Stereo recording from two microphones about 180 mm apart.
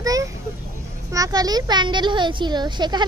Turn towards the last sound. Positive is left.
turn(degrees=-25)  # may be behind; listen again after turning